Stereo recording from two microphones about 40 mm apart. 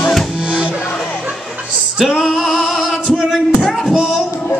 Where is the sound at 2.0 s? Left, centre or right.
Centre.